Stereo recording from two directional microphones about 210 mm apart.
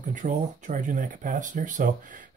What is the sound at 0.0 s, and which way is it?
Speech, 35° right (ahead or behind).